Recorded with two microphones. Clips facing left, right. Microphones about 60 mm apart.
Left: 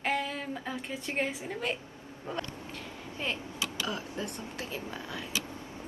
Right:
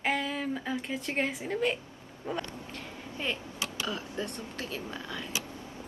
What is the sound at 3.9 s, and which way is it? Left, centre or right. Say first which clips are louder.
Speech: right 1 dB; centre.